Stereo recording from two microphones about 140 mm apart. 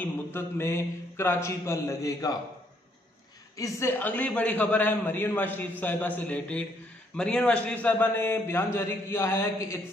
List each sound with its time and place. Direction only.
0.0 s a man's voice: 15° left (ahead or behind)
3.5 s a man's voice: 25° left (ahead or behind)
4.0 s a man's voice: 10° left (ahead or behind)